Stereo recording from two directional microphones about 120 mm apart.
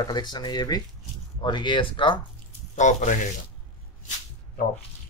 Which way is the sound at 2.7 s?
90° left.